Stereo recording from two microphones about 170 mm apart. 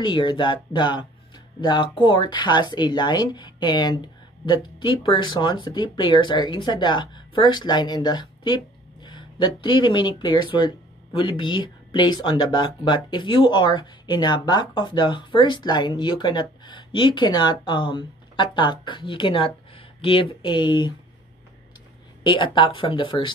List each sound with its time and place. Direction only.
0.0 s speech: 30° left (ahead or behind)
22.2 s speech: 25° left (ahead or behind)